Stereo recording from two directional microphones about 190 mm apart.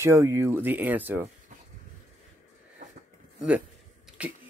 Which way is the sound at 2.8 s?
45° right (ahead or behind).